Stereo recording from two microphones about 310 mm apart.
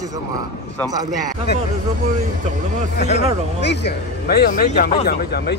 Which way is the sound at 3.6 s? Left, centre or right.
Left.